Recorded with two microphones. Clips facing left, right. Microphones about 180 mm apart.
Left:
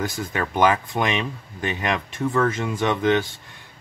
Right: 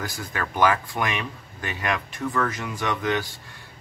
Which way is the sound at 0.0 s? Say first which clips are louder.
Left 5 dB; 25° left (ahead or behind).